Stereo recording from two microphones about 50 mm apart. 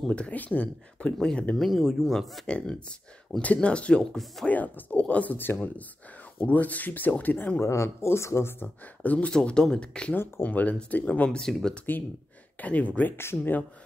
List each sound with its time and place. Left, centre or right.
0.1 s speech: left
1.6 s speech: centre
2.4 s speech: centre
4.5 s speech: left
7.6 s speech: left
8.5 s speech: left
9.3 s speech: centre
10.1 s speech: left
10.4 s speech: left
11.2 s speech: centre
12.5 s speech: left
13.1 s speech: left
13.4 s speech: left